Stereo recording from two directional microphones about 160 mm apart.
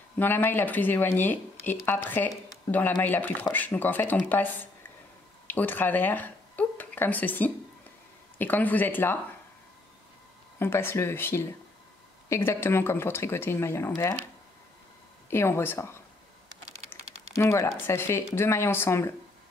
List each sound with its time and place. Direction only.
0.2 s speech: 10° left (ahead or behind)
5.5 s speech: 10° left (ahead or behind)
10.6 s speech: 15° left (ahead or behind)
15.2 s speech: 15° left (ahead or behind)
17.4 s speech: 15° left (ahead or behind)